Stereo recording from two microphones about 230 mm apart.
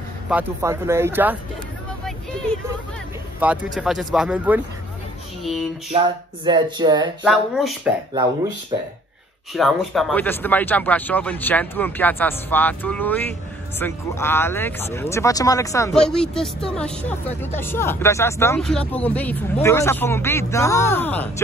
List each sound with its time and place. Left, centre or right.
0.3 s speech: centre
3.3 s speech: centre
5.4 s a sound: centre
6.0 s speech: centre
7.2 s speech: centre
8.7 s speech: centre
9.5 s speech: centre
15.9 s speech: centre